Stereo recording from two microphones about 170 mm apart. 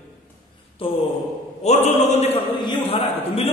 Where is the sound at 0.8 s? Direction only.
30° left (ahead or behind).